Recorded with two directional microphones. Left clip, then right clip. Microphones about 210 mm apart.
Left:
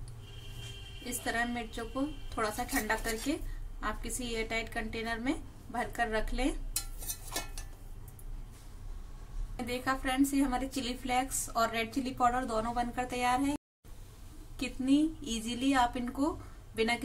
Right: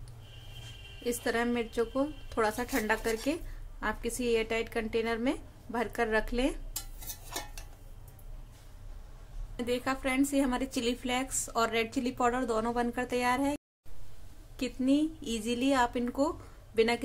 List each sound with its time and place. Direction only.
1.0 s a woman's voice: 40° right (ahead or behind)
9.7 s a woman's voice: 35° right (ahead or behind)
14.6 s a woman's voice: 30° right (ahead or behind)